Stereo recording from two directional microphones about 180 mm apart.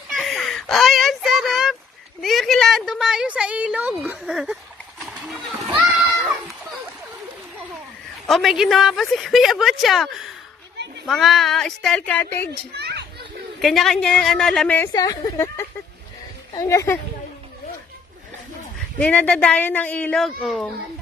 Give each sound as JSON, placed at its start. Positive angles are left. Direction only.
{"t": 0.1, "sound": "a sound", "side_deg": 0}
{"t": 2.2, "sound": "a woman's voice", "side_deg": 0}
{"t": 5.9, "sound": "a sound", "side_deg": -5}
{"t": 8.3, "sound": "a woman's voice", "side_deg": 0}
{"t": 12.7, "sound": "children playing", "side_deg": -65}
{"t": 13.6, "sound": "a woman's voice", "side_deg": 0}
{"t": 18.9, "sound": "speech", "side_deg": 5}